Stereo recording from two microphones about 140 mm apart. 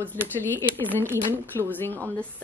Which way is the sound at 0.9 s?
15° right (ahead or behind).